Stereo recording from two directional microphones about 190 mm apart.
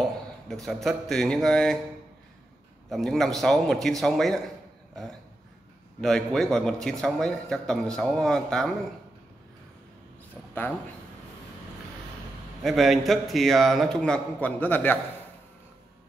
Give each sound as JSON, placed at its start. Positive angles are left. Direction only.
{"t": 0.5, "sound": "a man's voice", "side_deg": 0}
{"t": 2.9, "sound": "a man's voice", "side_deg": 0}
{"t": 5.9, "sound": "a man's voice", "side_deg": 5}
{"t": 12.6, "sound": "a man's voice", "side_deg": 0}